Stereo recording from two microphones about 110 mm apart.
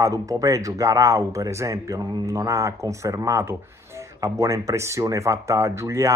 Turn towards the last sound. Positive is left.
turn(degrees=-25)  # may be behind; listen again after turning